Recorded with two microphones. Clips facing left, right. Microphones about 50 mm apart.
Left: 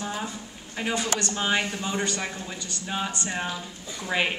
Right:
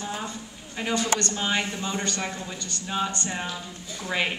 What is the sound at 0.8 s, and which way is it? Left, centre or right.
A man's voice, centre.